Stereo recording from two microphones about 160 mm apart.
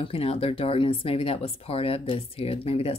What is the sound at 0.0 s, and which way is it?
Speech, 35° left (ahead or behind).